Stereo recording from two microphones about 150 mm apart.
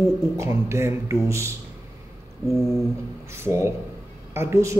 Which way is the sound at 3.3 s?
15° right (ahead or behind).